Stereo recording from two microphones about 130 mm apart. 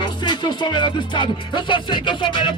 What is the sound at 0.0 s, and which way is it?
Music, 35° left (ahead or behind).